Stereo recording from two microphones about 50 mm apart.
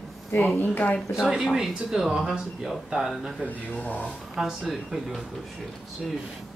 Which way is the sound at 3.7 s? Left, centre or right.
Left.